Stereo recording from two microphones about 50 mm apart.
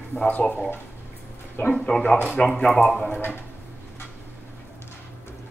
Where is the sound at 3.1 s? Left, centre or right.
Left.